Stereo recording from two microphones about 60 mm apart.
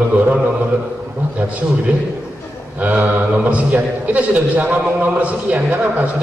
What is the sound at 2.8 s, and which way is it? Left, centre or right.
A man's voice, right.